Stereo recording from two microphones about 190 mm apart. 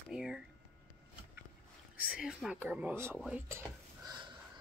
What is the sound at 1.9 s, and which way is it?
Speech, 5° right (ahead or behind).